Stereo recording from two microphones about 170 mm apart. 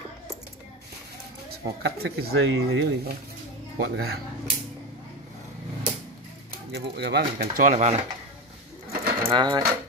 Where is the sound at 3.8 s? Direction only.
80° right.